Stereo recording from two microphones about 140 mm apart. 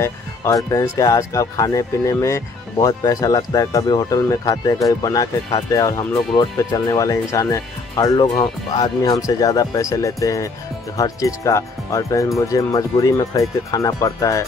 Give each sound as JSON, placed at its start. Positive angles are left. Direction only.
{"t": 0.0, "sound": "speech", "side_deg": 20}